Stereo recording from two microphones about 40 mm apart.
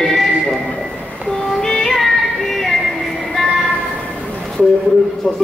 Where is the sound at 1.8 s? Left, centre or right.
Centre.